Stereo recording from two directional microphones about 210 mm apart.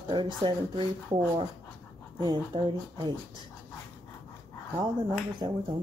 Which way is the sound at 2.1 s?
20° right (ahead or behind).